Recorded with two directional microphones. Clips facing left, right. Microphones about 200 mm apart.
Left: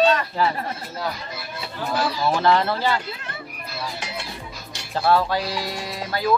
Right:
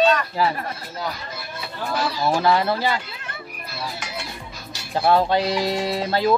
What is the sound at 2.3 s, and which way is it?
Speech, 10° right (ahead or behind).